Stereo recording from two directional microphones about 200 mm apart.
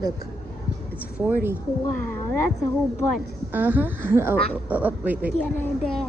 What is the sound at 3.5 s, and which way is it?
Speech, 10° right (ahead or behind).